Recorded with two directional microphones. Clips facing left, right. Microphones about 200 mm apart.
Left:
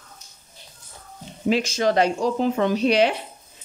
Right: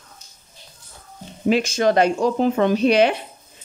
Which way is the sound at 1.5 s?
55° right (ahead or behind).